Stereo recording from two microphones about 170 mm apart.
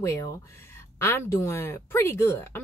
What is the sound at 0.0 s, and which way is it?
Speech, 15° left (ahead or behind).